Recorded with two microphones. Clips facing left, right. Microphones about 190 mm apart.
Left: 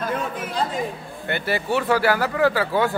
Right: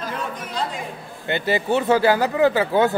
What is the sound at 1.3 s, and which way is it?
Speech, 20° right (ahead or behind).